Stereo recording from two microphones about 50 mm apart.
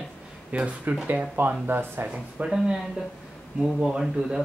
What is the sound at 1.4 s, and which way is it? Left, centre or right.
Speech, right.